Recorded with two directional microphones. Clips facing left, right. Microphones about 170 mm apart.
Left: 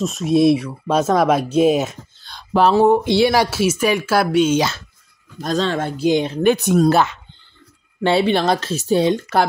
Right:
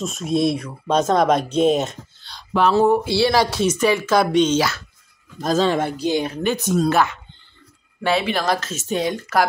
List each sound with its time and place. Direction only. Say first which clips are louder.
0.0 s speech: left 5 dB; centre (ahead or behind)
2.7 s speech: left 2 dB; 20° left (ahead or behind)
4.6 s speech: left 1 dB; 25° left (ahead or behind)
5.4 s speech: right 2 dB; centre (ahead or behind)
6.1 s speech: left 3 dB; 25° left (ahead or behind)
6.4 s speech: left 7 dB; 65° left (ahead or behind)
6.9 s speech: left 3 dB; 25° left (ahead or behind)